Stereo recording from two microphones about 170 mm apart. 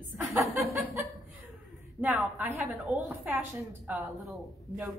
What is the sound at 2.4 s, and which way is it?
Speech, 15° right (ahead or behind).